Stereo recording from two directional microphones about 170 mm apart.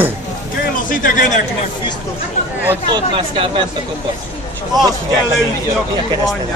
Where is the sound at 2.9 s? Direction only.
30° right (ahead or behind).